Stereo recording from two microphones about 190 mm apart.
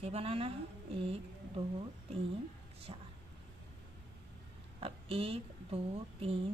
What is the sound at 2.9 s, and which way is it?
Speech, 30° right (ahead or behind).